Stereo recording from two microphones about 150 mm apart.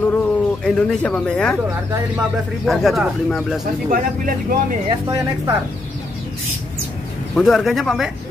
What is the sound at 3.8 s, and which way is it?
Speech, 65° right (ahead or behind).